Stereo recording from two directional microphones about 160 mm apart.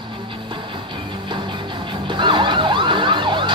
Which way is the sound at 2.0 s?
30° right (ahead or behind).